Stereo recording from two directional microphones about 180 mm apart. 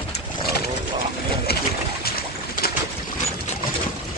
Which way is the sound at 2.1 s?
60° left (ahead or behind).